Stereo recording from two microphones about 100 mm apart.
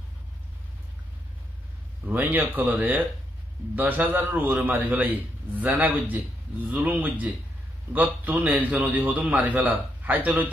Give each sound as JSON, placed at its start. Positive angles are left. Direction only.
{"t": 2.0, "sound": "a man's voice", "side_deg": -20}